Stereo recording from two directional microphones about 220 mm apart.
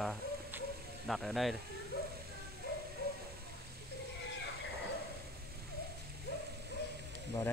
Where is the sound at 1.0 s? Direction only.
Centre (ahead or behind).